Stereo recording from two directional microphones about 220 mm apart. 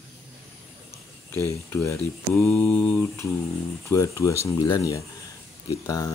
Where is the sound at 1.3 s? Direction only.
10° left (ahead or behind).